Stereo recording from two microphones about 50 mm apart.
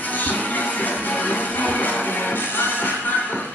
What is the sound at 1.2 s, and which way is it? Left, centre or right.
Music, left.